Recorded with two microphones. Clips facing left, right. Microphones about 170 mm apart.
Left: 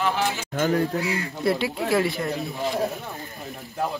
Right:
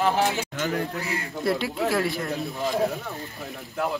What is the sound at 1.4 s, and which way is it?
Speech, centre (ahead or behind).